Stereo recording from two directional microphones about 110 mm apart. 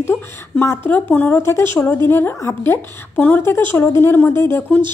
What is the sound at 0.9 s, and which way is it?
Speech, 15° left (ahead or behind).